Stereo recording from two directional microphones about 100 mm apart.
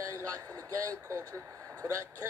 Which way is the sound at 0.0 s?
35° right (ahead or behind).